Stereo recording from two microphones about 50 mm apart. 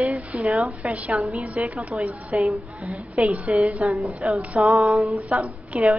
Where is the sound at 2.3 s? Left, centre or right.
Centre.